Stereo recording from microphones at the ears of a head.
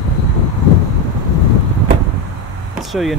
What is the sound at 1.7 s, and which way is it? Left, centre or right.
Vehicle, right.